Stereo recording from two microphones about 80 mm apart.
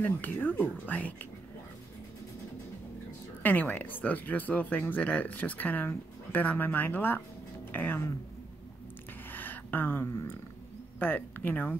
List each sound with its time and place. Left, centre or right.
0.0 s speech: left
3.4 s speech: left
9.3 s a sound: left
11.0 s speech: left